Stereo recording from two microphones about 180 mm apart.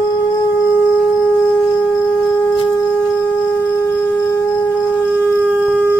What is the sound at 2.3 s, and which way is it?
Wind instrument, 10° left (ahead or behind).